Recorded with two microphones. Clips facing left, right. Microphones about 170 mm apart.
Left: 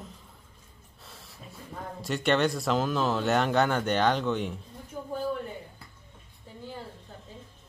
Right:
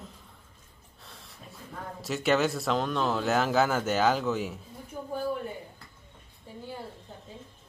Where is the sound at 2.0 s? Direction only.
Centre (ahead or behind).